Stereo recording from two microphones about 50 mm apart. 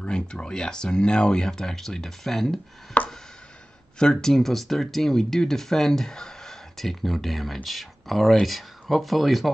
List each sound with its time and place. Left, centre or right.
0.1 s speech: centre
2.9 s chopping: left
4.0 s speech: centre